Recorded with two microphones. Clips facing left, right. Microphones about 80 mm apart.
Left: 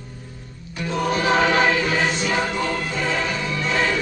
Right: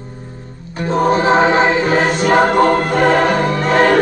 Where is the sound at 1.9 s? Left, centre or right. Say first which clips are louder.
Right 9 dB; right.